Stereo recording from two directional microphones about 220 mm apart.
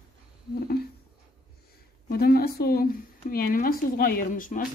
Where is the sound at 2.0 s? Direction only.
45° left (ahead or behind).